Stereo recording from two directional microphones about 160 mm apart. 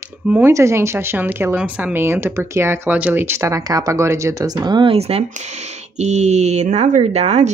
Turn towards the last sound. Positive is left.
turn(degrees=-40)  # may be behind; listen again after turning